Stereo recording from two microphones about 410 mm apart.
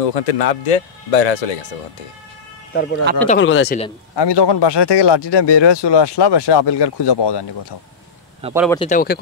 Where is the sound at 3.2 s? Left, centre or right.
Left.